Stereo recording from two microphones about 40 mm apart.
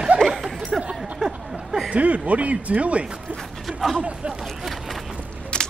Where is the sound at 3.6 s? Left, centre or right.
Centre.